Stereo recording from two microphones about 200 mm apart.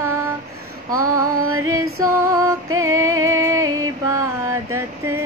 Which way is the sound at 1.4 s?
90° right.